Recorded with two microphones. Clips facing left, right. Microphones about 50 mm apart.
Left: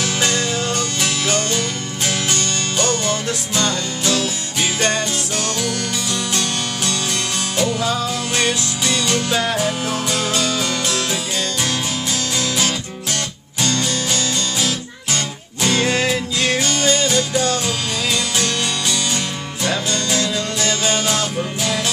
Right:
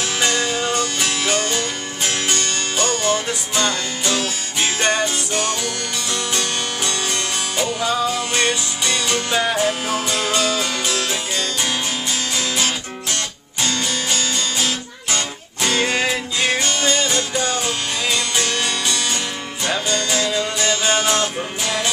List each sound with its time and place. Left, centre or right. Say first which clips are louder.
0.0 s music: even; centre
10.1 s music: right 1 dB; right
13.6 s music: left 2 dB; centre
15.6 s music: left 1 dB; centre
20.2 s music: even; centre